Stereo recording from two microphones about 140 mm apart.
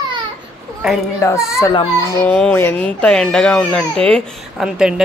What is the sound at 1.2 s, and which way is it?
Speech, 20° left (ahead or behind).